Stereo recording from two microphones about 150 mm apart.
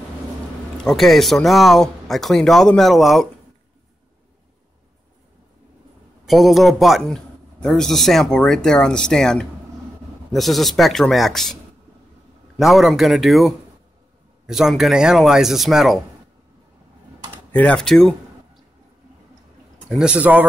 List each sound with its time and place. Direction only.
0.8 s speech: centre (ahead or behind)
6.2 s speech: centre (ahead or behind)
12.5 s speech: centre (ahead or behind)
17.5 s speech: 10° left (ahead or behind)
20.0 s speech: 5° right (ahead or behind)